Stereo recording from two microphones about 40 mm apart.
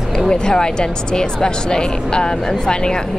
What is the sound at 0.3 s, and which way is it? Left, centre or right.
Speech, centre.